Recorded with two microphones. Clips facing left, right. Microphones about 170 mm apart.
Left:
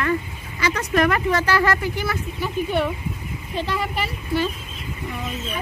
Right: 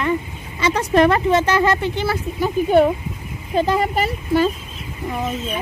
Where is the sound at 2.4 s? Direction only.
45° right (ahead or behind).